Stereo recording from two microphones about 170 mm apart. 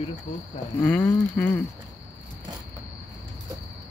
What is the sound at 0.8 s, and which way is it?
Speech, 10° left (ahead or behind).